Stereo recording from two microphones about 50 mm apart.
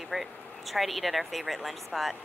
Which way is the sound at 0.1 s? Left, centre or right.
Centre.